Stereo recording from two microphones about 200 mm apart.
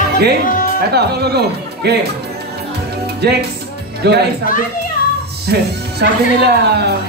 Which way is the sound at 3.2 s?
55° right (ahead or behind).